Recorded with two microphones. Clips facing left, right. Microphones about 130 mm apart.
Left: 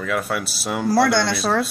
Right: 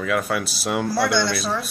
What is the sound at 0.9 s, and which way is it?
Speech, 70° left (ahead or behind).